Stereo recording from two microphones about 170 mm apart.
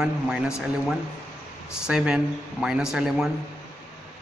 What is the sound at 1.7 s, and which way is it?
A man's voice, 5° right (ahead or behind).